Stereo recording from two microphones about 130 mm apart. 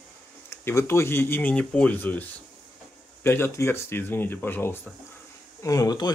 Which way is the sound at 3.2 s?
15° left (ahead or behind).